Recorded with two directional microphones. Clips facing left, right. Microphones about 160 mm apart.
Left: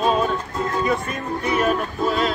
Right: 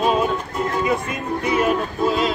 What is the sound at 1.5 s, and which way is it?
Speech, 15° right (ahead or behind).